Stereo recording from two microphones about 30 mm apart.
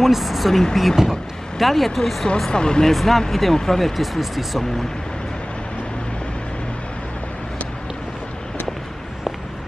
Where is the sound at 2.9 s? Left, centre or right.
Centre.